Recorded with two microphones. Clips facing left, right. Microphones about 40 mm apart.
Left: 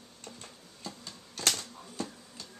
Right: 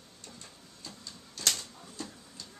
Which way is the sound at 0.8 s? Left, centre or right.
Left.